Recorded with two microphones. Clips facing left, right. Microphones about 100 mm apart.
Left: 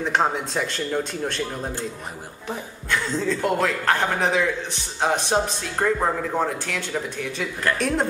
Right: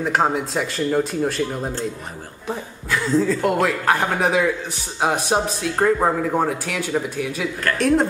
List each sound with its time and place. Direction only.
0.0 s a woman's voice: 5° right (ahead or behind)